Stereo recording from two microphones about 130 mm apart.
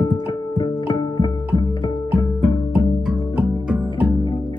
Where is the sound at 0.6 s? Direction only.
35° left (ahead or behind).